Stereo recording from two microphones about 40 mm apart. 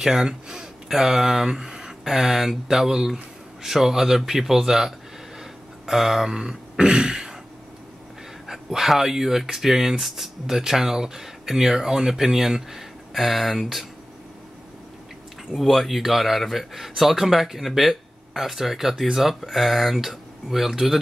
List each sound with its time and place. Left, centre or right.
0.0 s speech: centre
6.3 s throat clearing: centre
8.5 s speech: centre
15.5 s speech: centre